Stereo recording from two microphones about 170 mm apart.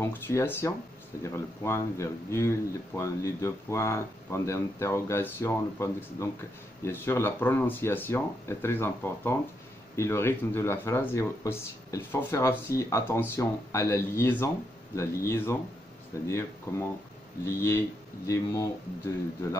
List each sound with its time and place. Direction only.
0.0 s speech: 15° left (ahead or behind)